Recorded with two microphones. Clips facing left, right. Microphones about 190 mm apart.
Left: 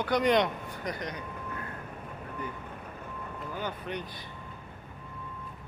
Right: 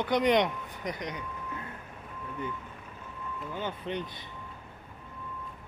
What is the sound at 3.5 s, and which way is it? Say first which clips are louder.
Speech: right 2 dB; 25° right (ahead or behind).